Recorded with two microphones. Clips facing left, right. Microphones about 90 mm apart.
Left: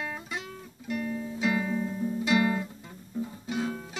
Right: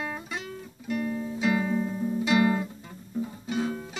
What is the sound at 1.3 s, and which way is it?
Music, 5° right (ahead or behind).